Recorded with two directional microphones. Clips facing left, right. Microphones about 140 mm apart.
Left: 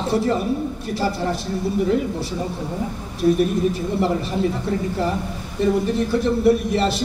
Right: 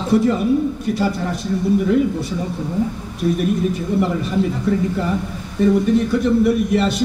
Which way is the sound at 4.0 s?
35° left (ahead or behind).